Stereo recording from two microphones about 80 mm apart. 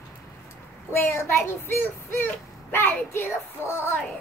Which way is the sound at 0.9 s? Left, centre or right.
Left.